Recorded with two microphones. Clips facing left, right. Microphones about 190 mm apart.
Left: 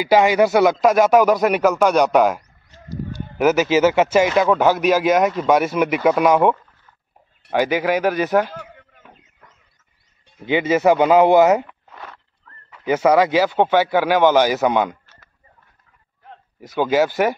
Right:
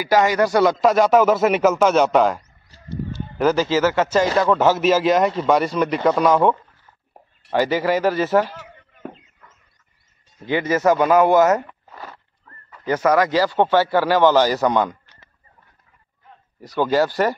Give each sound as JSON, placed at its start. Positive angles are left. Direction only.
{"t": 0.0, "sound": "speech", "side_deg": 20}
{"t": 0.5, "sound": "speech", "side_deg": 0}
{"t": 4.6, "sound": "speech", "side_deg": 0}
{"t": 7.7, "sound": "speech", "side_deg": 15}
{"t": 10.4, "sound": "speech", "side_deg": 20}
{"t": 11.9, "sound": "horse", "side_deg": -5}
{"t": 12.9, "sound": "speech", "side_deg": 10}
{"t": 16.8, "sound": "speech", "side_deg": 20}